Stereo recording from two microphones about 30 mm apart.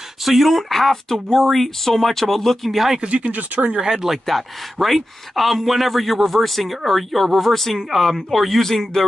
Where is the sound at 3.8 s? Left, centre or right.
Centre.